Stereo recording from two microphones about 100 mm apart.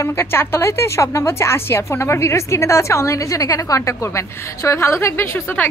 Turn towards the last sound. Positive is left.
turn(degrees=25)  # may be behind; listen again after turning